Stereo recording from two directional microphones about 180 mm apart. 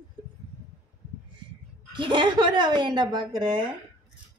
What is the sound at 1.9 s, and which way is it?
Speech, 25° right (ahead or behind).